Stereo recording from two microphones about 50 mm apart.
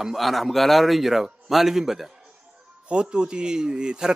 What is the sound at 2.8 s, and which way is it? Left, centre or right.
Speech, centre.